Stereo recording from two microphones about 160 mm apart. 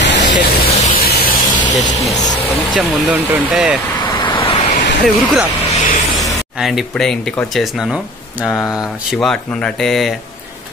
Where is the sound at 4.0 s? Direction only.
30° left (ahead or behind).